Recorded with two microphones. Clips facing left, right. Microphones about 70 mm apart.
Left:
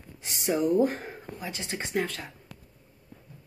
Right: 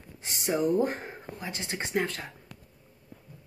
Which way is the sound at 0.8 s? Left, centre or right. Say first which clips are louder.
Left 3 dB; right.